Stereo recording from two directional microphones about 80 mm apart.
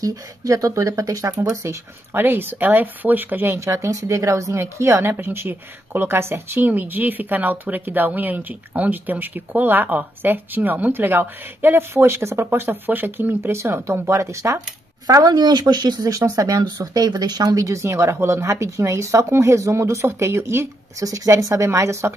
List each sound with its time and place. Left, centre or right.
0.0 s speech: right
2.1 s speech: right
3.5 s speech: right
15.0 s speech: right
16.1 s speech: right
17.6 s speech: right